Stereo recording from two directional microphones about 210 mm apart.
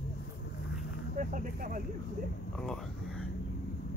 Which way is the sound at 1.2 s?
40° right (ahead or behind).